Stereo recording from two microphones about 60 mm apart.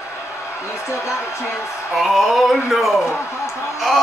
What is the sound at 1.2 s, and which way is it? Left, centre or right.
Speech, left.